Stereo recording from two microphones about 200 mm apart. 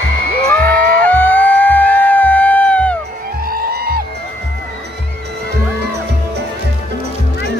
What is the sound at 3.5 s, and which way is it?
Music, 50° right (ahead or behind).